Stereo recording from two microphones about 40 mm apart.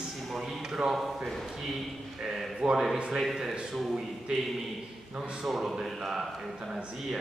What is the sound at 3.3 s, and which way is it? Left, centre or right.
Speech, centre.